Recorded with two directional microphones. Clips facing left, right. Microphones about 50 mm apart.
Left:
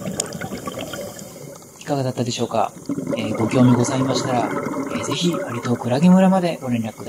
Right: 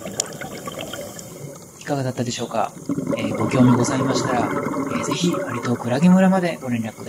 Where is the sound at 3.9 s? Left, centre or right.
Right.